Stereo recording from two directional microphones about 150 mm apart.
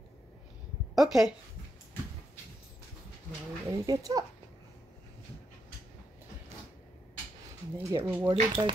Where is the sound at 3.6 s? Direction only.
20° right (ahead or behind).